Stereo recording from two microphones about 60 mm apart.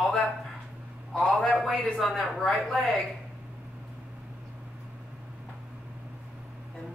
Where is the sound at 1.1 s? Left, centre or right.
Centre.